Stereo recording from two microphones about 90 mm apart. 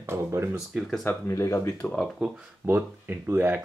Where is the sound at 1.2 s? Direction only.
30° left (ahead or behind).